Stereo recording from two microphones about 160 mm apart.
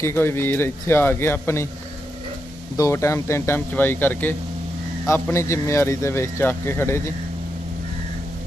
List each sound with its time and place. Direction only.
0.0 s speech: 15° left (ahead or behind)
2.8 s speech: 20° left (ahead or behind)